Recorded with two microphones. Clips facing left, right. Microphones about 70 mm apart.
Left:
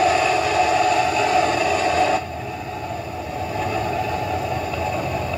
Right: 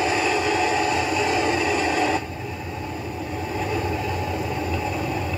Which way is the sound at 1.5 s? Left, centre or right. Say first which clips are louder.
Left 3 dB; right.